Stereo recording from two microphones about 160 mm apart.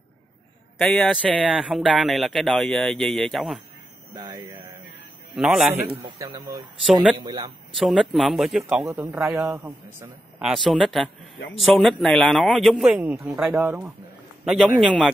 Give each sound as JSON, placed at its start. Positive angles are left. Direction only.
{"t": 0.7, "sound": "speech", "side_deg": 0}
{"t": 4.1, "sound": "speech", "side_deg": -25}
{"t": 5.3, "sound": "speech", "side_deg": -5}
{"t": 6.1, "sound": "speech", "side_deg": -20}
{"t": 6.9, "sound": "speech", "side_deg": -5}
{"t": 7.2, "sound": "speech", "side_deg": -25}
{"t": 7.7, "sound": "speech", "side_deg": 0}
{"t": 9.6, "sound": "speech", "side_deg": -20}
{"t": 10.4, "sound": "speech", "side_deg": 0}
{"t": 14.4, "sound": "a man's voice", "side_deg": 0}